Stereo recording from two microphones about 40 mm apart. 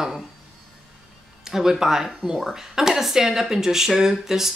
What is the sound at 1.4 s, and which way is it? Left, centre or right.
Speech, centre.